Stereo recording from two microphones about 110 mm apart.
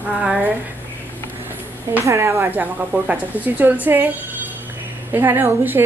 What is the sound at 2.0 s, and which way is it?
Speech, 25° right (ahead or behind).